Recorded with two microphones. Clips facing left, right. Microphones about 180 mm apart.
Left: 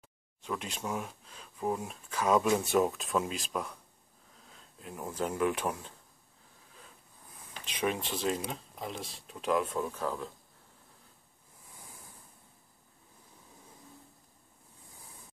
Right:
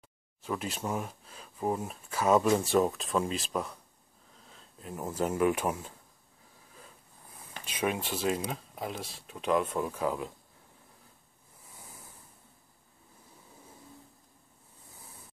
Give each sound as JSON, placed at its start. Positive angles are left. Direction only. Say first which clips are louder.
{"t": 0.4, "sound": "speech", "louder": "right 3 dB", "side_deg": -5}
{"t": 7.6, "sound": "speech", "louder": "right 1 dB", "side_deg": -5}